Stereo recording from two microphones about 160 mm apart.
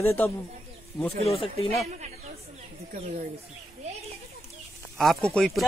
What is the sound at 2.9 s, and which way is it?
Speech, 50° right (ahead or behind).